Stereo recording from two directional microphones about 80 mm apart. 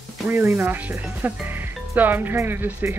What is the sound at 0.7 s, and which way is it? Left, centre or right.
Speech, right.